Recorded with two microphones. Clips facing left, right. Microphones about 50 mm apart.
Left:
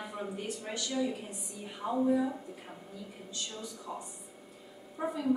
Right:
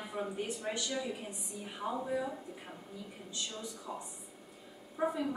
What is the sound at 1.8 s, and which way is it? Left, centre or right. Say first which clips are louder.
Speech: left 3 dB; centre.